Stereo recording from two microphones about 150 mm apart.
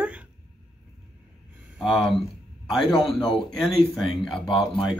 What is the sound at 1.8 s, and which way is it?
Speech, centre (ahead or behind).